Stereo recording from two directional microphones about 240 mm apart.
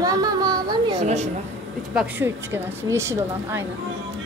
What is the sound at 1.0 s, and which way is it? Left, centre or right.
Speech, right.